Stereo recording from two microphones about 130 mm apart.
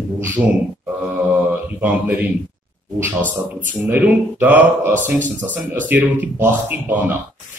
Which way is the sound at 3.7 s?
15° right (ahead or behind).